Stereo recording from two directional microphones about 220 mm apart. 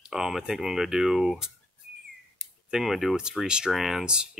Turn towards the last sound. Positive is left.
turn(degrees=-5)  # may be behind; listen again after turning